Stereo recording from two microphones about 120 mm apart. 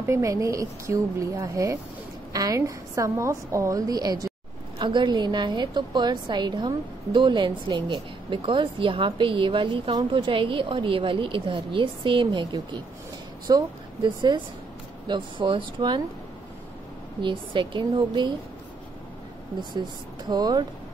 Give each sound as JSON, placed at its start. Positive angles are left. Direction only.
{"t": 0.0, "sound": "a woman's voice", "side_deg": -25}
{"t": 17.2, "sound": "a woman's voice", "side_deg": -45}
{"t": 20.2, "sound": "speech", "side_deg": -35}